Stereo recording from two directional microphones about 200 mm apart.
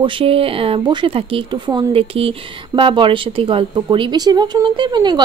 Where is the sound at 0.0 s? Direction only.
25° right (ahead or behind).